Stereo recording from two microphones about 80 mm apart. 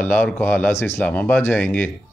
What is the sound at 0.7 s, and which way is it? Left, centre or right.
Speech, left.